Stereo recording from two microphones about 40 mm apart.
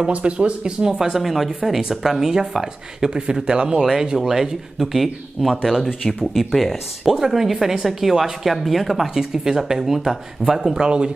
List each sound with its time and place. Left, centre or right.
0.1 s speech: right
4.3 s speech: centre